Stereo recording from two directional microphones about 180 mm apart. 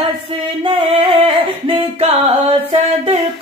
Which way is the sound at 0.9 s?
30° right (ahead or behind).